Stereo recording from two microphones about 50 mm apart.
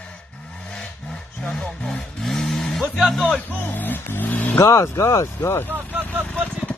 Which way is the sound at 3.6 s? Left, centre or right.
Left.